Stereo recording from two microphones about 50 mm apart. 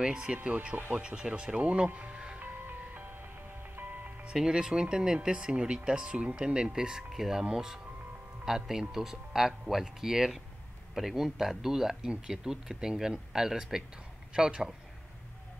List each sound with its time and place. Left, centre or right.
0.0 s speech: centre
0.9 s speech: centre
2.4 s music: right
4.3 s speech: centre